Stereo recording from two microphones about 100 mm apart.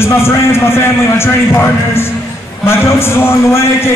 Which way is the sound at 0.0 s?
25° left (ahead or behind).